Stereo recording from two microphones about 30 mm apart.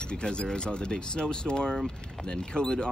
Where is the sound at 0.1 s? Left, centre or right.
Left.